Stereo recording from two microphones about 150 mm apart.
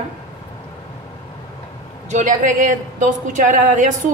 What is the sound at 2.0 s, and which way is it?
A woman's voice, 55° right (ahead or behind).